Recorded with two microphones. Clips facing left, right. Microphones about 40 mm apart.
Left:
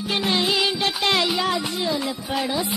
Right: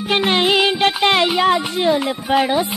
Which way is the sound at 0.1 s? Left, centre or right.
Right.